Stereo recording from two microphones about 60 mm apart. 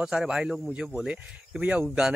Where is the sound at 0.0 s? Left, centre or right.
Centre.